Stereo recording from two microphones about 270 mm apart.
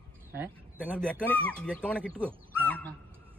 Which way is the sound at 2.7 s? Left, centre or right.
Centre.